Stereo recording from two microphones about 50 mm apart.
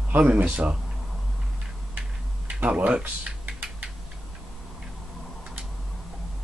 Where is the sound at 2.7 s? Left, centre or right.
Right.